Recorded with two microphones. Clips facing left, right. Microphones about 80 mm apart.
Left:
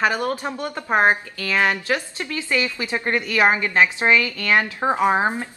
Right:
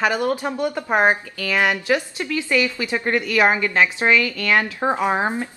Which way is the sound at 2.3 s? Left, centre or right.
Left.